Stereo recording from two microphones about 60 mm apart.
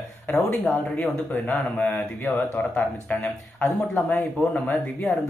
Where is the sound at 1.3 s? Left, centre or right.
Left.